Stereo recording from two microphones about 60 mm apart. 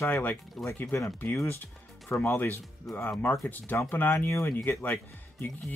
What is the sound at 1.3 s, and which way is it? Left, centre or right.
Speech, left.